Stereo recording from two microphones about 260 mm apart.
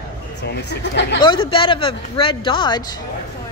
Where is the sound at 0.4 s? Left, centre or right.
Left.